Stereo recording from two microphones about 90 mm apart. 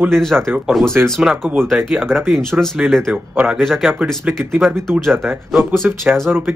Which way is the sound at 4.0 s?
20° right (ahead or behind).